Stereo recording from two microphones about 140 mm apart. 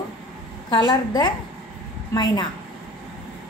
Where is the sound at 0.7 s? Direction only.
30° left (ahead or behind).